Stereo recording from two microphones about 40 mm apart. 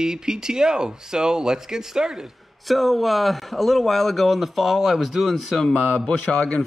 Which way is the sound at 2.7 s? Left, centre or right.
Centre.